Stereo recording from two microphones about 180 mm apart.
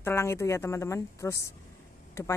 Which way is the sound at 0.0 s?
15° left (ahead or behind).